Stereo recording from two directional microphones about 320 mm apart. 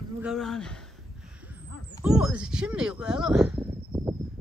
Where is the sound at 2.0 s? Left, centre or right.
Centre.